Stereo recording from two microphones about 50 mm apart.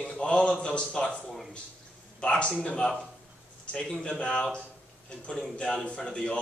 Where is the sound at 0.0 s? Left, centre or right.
Left.